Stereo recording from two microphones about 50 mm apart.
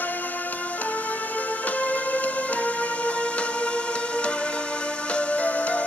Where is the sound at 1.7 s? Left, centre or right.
Left.